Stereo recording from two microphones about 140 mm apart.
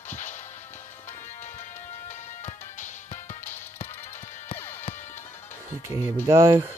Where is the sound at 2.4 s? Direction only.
55° left (ahead or behind).